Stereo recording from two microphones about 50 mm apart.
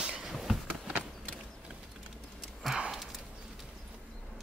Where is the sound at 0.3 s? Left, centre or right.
Centre.